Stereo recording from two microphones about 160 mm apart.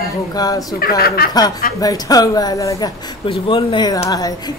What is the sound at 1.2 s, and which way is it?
Speech, 75° left (ahead or behind).